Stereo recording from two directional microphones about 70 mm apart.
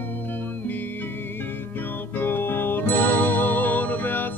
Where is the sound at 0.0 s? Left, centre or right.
Left.